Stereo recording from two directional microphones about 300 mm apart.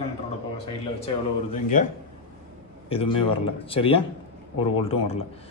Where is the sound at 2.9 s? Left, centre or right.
Centre.